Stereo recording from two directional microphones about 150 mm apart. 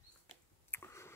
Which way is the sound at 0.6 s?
15° left (ahead or behind).